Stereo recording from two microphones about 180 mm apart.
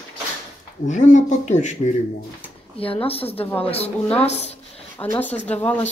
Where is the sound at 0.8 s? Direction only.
45° left (ahead or behind).